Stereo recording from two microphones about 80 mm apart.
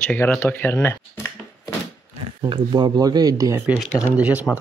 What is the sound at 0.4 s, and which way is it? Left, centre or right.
Speech, left.